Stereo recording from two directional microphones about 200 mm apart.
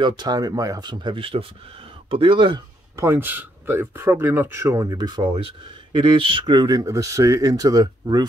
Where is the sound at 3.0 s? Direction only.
10° right (ahead or behind).